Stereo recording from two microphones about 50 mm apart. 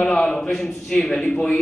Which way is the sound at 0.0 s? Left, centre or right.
Centre.